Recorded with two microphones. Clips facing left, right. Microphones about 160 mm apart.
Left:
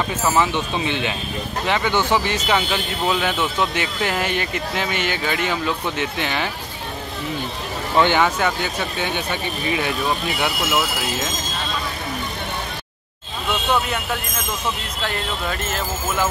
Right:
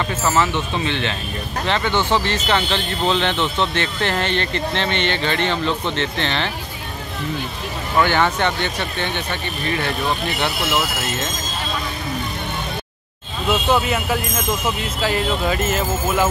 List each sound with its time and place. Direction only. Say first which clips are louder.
0.2 s speech: even; 15° left (ahead or behind)
8.0 s speech: even; 15° left (ahead or behind)
8.4 s speech: right 1 dB; 5° left (ahead or behind)
13.5 s speech: right 3 dB; 5° right (ahead or behind)